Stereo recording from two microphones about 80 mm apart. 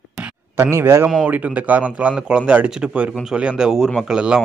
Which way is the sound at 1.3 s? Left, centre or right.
Centre.